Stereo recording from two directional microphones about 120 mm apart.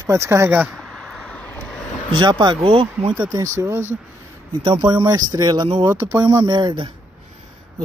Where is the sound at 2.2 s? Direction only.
40° right (ahead or behind).